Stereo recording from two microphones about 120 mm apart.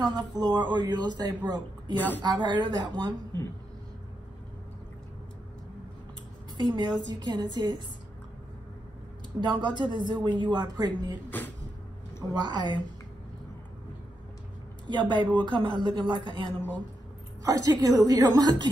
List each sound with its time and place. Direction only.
0.0 s speech: 35° right (ahead or behind)
2.0 s a woman's voice: 15° left (ahead or behind)
2.2 s speech: 35° right (ahead or behind)
6.5 s speech: 40° right (ahead or behind)
9.4 s speech: 40° right (ahead or behind)
11.2 s speech: 15° left (ahead or behind)
12.4 s speech: 40° right (ahead or behind)
14.9 s speech: 40° right (ahead or behind)